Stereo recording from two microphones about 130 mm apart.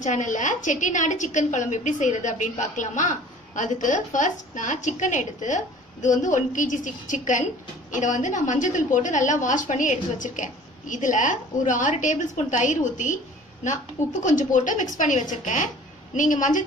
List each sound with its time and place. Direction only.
0.0 s a woman's voice: 75° left (ahead or behind)
14.2 s a woman's voice: 80° left